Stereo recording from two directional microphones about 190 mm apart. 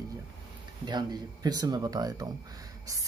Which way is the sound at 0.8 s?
20° right (ahead or behind).